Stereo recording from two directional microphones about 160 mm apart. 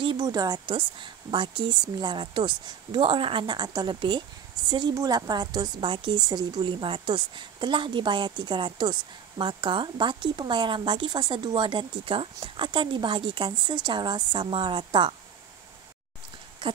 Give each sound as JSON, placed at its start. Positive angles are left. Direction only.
{"t": 0.0, "sound": "a woman's voice", "side_deg": -30}